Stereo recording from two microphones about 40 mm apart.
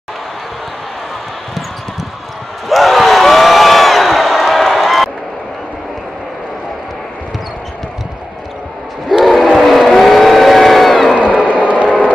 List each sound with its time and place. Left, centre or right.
2.7 s crowd: centre
9.2 s battle cry: centre
9.6 s vehicle: centre
11.5 s a sound: right